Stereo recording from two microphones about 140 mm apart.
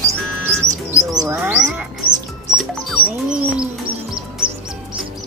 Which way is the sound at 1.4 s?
10° right (ahead or behind).